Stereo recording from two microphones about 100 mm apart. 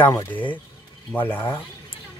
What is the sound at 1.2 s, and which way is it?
Speech, 20° left (ahead or behind).